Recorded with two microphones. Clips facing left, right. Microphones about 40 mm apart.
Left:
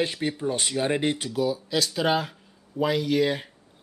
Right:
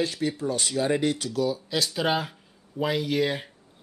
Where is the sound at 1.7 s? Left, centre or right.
Centre.